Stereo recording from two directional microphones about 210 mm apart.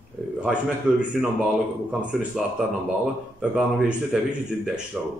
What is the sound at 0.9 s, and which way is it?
Speech, 5° right (ahead or behind).